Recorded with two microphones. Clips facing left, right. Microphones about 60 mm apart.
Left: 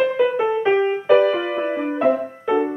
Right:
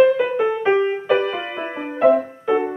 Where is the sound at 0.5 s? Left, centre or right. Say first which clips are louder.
Even; centre.